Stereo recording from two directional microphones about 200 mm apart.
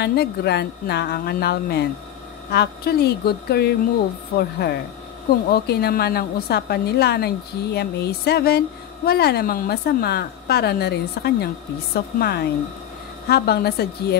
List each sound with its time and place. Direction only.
0.0 s a woman's voice: 55° left (ahead or behind)